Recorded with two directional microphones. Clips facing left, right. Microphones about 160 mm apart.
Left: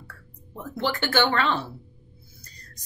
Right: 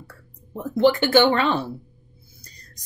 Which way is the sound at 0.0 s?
15° right (ahead or behind).